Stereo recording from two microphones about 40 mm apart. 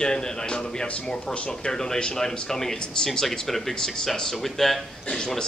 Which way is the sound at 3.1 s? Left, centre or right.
Centre.